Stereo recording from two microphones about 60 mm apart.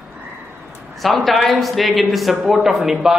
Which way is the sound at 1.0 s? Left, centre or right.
Centre.